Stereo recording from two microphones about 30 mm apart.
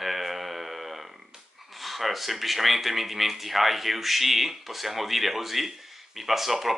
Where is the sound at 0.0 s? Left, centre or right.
Centre.